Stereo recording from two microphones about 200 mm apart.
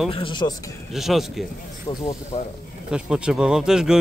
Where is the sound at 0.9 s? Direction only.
Centre (ahead or behind).